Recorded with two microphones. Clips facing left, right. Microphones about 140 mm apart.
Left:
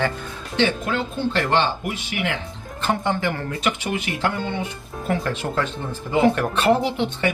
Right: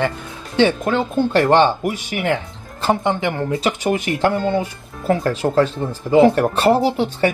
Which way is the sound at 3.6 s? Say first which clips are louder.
Right 3 dB; 40° right (ahead or behind).